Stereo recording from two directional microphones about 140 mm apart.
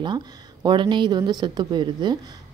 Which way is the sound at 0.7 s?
35° right (ahead or behind).